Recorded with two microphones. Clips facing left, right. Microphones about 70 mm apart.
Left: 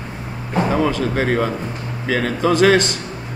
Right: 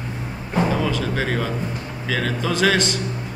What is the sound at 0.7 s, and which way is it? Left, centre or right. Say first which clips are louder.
A man's voice: left 4 dB; left.